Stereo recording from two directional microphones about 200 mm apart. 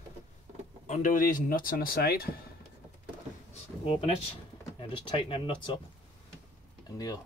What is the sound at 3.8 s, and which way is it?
Speech, 30° left (ahead or behind).